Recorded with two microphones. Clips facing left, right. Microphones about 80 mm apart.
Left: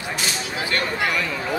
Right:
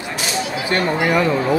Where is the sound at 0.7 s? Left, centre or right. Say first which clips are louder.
Right 6 dB; right.